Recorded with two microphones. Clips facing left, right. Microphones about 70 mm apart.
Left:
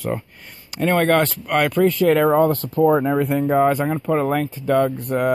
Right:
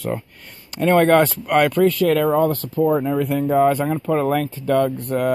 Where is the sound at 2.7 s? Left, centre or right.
Left.